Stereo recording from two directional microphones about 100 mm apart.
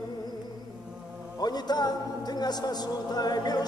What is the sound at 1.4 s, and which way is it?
Speech, 45° left (ahead or behind).